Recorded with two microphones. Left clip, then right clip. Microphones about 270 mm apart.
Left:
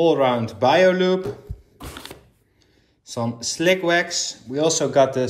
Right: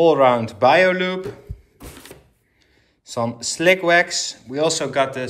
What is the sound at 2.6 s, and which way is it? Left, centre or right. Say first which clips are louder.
Speech: right 3 dB; centre.